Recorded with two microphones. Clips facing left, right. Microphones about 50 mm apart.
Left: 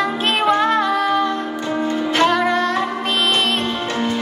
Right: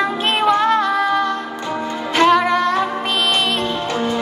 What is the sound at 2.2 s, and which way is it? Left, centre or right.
Music, right.